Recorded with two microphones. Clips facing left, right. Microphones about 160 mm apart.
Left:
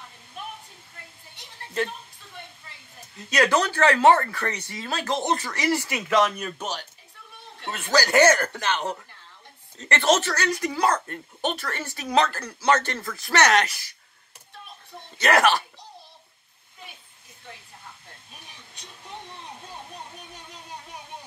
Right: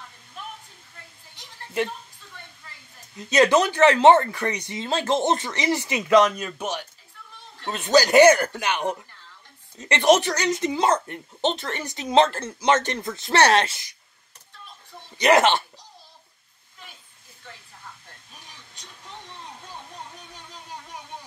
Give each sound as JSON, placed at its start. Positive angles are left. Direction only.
{"t": 3.3, "sound": "speech", "side_deg": -20}
{"t": 7.7, "sound": "speech", "side_deg": -20}
{"t": 15.1, "sound": "speech", "side_deg": -20}